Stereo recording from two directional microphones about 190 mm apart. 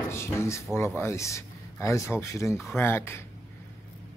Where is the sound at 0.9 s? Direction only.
15° left (ahead or behind).